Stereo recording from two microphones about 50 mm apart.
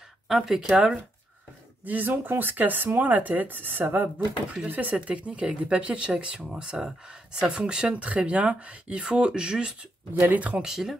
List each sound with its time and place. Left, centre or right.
0.3 s speech: centre
1.9 s speech: right; by 9.8 s centre
10.3 s speech: right
10.6 s speech: centre